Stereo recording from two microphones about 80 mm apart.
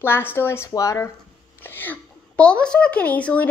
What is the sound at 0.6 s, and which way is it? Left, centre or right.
Speech, left.